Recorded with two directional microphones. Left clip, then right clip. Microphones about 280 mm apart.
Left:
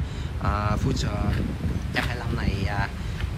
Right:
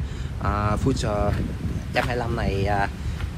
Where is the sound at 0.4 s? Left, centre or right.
Centre.